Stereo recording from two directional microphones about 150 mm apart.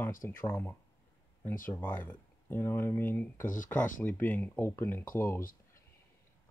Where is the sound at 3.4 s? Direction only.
60° left (ahead or behind).